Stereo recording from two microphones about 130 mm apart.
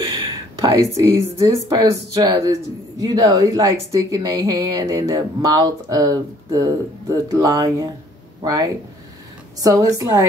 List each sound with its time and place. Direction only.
0.6 s speech: 25° right (ahead or behind)